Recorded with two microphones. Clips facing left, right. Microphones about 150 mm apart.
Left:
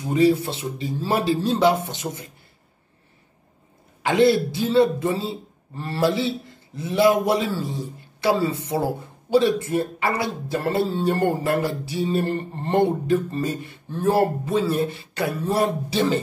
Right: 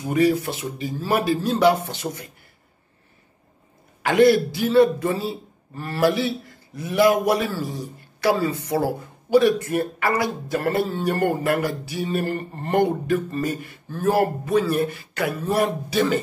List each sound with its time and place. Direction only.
0.1 s speech: 25° left (ahead or behind)
4.0 s a man's voice: 20° left (ahead or behind)
8.2 s speech: 25° left (ahead or behind)